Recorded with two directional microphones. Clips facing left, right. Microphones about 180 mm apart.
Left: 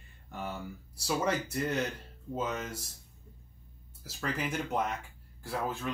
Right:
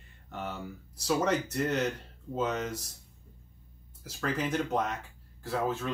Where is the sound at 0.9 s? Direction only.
10° left (ahead or behind).